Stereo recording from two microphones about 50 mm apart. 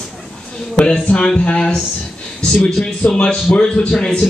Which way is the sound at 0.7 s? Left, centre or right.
Left.